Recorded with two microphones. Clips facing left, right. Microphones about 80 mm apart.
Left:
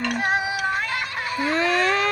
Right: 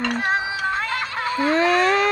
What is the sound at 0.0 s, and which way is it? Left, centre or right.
Music, right.